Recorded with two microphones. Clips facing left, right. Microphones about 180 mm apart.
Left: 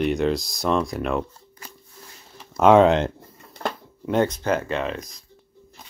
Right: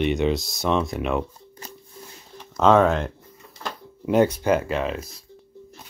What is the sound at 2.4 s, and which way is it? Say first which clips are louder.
Speech: left 3 dB; 10° left (ahead or behind).